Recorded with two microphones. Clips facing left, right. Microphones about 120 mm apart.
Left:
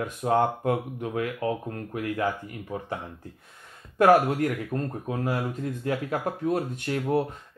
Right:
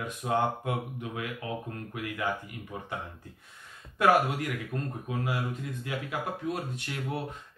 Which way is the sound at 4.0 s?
45° left (ahead or behind).